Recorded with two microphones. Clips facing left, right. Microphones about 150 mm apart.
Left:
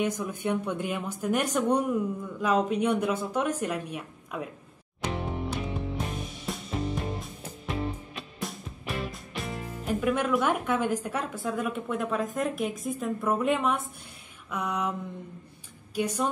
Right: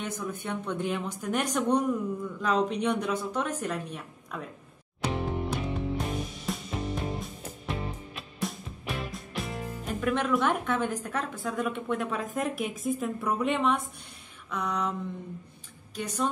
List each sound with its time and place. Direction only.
0.0 s a woman's voice: 10° left (ahead or behind)
5.1 s music: centre (ahead or behind)
14.5 s a woman's voice: 10° left (ahead or behind)